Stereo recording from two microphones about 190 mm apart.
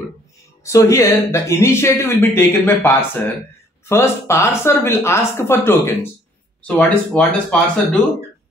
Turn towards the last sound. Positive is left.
turn(degrees=5)  # may be behind; listen again after turning